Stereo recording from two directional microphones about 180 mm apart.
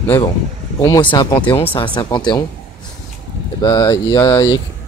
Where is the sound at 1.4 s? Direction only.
10° left (ahead or behind).